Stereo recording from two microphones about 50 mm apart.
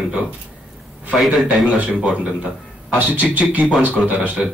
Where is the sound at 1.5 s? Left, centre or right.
Right.